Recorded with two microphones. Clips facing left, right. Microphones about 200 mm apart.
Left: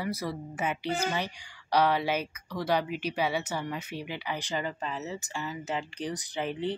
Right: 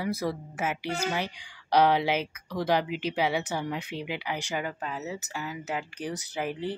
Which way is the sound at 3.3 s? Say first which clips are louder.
Right 2 dB; 15° right (ahead or behind).